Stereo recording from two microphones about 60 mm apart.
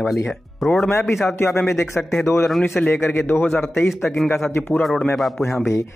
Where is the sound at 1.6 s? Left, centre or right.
Left.